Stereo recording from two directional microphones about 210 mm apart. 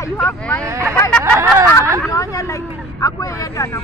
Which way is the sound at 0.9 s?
10° left (ahead or behind).